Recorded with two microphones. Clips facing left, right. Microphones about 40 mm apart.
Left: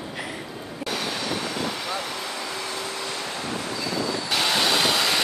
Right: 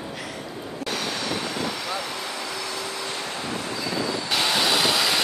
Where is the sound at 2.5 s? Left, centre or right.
Left.